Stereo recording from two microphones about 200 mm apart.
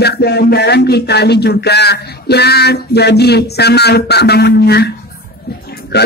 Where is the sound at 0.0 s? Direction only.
55° left (ahead or behind).